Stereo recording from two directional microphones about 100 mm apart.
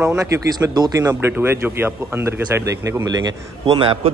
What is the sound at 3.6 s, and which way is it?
Speech, 65° right (ahead or behind).